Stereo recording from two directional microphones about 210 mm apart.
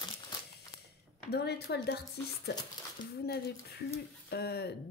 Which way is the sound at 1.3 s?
50° left (ahead or behind).